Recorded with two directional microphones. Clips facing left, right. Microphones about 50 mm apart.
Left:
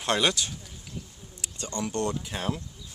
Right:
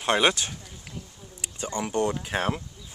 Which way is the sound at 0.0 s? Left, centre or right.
Right.